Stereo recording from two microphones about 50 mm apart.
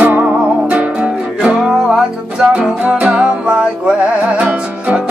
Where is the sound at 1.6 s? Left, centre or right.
Centre.